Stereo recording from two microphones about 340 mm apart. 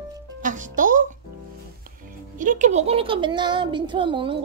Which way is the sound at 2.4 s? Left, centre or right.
Right.